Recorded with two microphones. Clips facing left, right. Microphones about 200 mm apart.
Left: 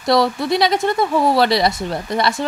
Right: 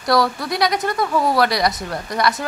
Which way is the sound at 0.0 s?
25° left (ahead or behind).